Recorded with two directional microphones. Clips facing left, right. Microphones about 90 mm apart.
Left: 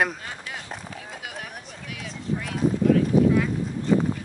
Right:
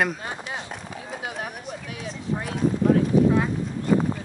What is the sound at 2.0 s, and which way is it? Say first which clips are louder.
Clip-clop: even; 35° right (ahead or behind).